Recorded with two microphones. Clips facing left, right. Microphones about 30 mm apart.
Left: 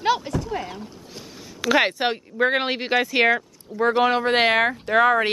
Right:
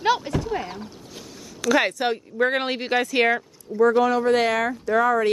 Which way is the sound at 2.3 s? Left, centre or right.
Centre.